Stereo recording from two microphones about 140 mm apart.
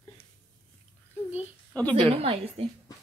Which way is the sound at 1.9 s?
40° right (ahead or behind).